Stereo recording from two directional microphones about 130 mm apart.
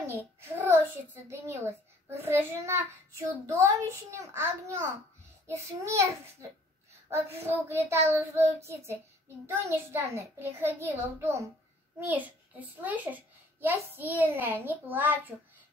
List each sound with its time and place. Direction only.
0.0 s child singing: 20° right (ahead or behind)
1.3 s a child's voice: 20° right (ahead or behind)
7.1 s a child's voice: 20° right (ahead or behind)